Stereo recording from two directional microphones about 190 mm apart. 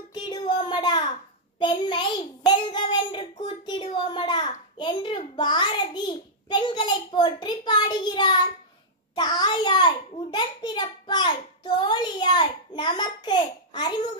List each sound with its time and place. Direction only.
0.1 s child singing: 25° left (ahead or behind)
1.6 s a child's voice: 25° left (ahead or behind)